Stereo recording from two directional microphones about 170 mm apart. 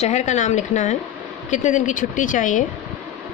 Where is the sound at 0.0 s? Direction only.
45° left (ahead or behind).